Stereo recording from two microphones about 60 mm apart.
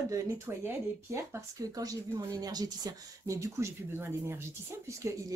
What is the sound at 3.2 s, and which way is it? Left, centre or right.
Speech, right.